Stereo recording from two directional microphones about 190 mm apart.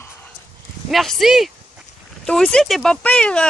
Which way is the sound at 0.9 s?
Centre (ahead or behind).